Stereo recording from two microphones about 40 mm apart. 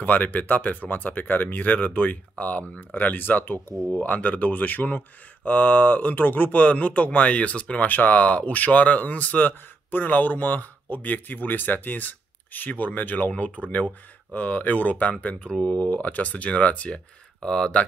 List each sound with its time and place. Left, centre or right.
0.0 s speech: left
7.9 s speech: left
9.8 s speech: left
13.6 s speech: right
14.3 s speech: left